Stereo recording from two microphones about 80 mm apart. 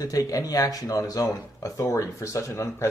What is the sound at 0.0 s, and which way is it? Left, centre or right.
Speech, left.